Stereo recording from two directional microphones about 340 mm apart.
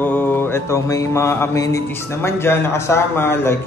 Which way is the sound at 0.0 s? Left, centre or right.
Centre.